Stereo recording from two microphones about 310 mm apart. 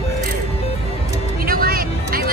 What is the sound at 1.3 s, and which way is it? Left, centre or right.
Music, right.